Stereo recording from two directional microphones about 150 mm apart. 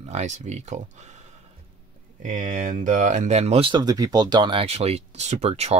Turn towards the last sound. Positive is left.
turn(degrees=-45)  # may be behind; listen again after turning